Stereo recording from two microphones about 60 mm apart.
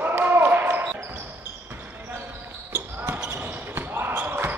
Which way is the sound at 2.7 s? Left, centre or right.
Right.